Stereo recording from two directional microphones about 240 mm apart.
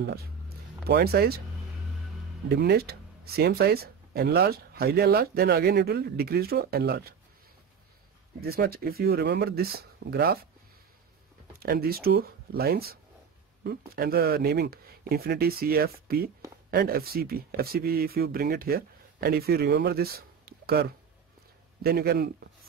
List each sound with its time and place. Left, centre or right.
0.0 s speech: right
2.5 s speech: right
8.4 s speech: right
11.6 s speech: right